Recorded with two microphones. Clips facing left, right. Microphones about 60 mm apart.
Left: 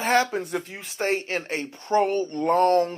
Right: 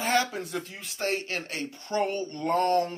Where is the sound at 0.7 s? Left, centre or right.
Left.